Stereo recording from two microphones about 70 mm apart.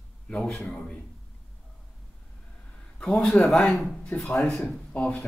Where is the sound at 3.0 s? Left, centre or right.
Centre.